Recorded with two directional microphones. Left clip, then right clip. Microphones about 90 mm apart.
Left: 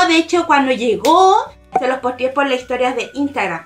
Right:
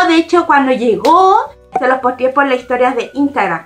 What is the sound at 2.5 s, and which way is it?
A woman's voice, centre (ahead or behind).